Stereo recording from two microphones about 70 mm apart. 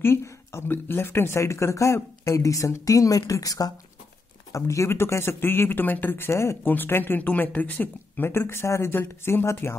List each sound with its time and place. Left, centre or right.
0.0 s speech: left
4.5 s speech: left
6.6 s speech: left